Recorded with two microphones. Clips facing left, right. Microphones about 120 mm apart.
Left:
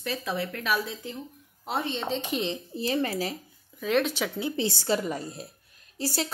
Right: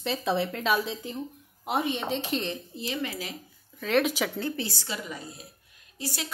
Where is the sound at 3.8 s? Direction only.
Centre (ahead or behind).